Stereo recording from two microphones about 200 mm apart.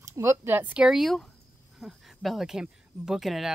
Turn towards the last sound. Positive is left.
turn(degrees=0)  # may be behind; listen again after turning